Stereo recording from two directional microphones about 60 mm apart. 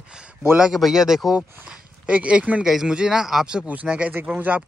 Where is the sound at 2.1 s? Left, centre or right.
Centre.